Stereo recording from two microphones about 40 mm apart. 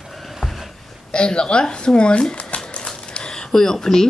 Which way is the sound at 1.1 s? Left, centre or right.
Left.